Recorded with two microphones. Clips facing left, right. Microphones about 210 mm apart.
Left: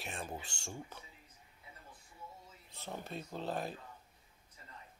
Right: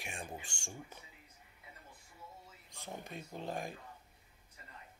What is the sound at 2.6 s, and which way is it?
Speech, 15° right (ahead or behind).